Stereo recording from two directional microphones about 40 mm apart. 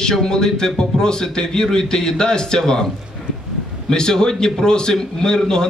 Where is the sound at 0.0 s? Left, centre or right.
Centre.